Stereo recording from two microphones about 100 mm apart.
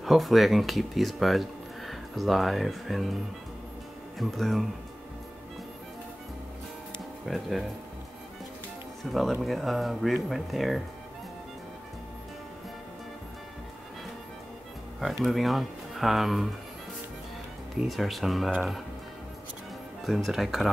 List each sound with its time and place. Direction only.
0.0 s speech: centre (ahead or behind)
4.2 s speech: centre (ahead or behind)
7.2 s speech: centre (ahead or behind)
9.1 s speech: centre (ahead or behind)
15.2 s speech: centre (ahead or behind)
17.7 s speech: centre (ahead or behind)
20.2 s speech: centre (ahead or behind)